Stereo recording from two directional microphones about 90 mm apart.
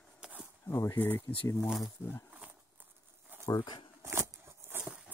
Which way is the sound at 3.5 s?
50° left (ahead or behind).